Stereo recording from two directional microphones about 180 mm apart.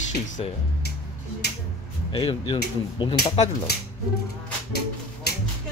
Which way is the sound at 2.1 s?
30° left (ahead or behind).